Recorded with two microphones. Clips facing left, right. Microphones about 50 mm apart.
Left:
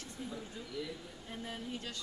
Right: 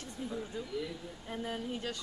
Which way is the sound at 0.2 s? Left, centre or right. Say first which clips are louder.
Right 6 dB; centre.